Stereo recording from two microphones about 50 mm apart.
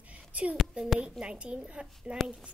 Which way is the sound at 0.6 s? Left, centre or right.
Centre.